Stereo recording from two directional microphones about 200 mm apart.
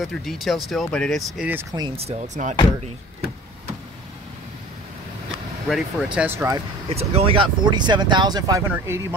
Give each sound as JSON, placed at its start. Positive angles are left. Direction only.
{"t": 0.0, "sound": "speech", "side_deg": 0}
{"t": 2.0, "sound": "speech", "side_deg": -35}
{"t": 5.7, "sound": "speech", "side_deg": -5}
{"t": 6.9, "sound": "speech", "side_deg": -30}